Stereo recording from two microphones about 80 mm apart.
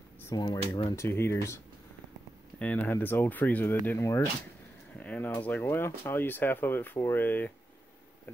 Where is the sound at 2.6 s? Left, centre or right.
Left.